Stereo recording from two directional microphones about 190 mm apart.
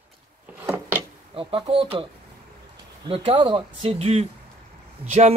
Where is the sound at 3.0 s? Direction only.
30° right (ahead or behind).